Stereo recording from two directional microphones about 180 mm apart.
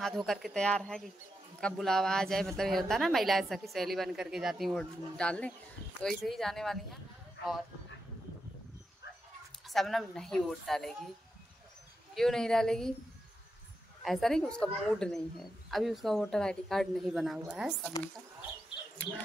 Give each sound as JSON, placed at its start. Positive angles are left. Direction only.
{"t": 0.0, "sound": "a woman's voice", "side_deg": 0}
{"t": 7.4, "sound": "speech", "side_deg": 75}
{"t": 9.7, "sound": "a woman's voice", "side_deg": 0}
{"t": 12.2, "sound": "a woman's voice", "side_deg": 0}
{"t": 14.0, "sound": "a woman's voice", "side_deg": 0}